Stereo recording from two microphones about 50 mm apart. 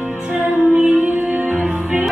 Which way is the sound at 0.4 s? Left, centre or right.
Right.